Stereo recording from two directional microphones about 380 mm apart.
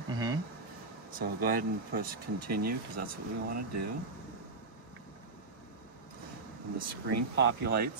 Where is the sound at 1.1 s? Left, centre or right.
Right.